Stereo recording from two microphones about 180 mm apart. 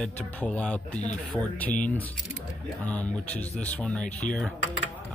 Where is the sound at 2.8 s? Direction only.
10° left (ahead or behind).